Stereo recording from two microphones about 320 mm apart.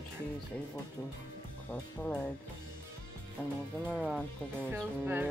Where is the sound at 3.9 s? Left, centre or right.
Centre.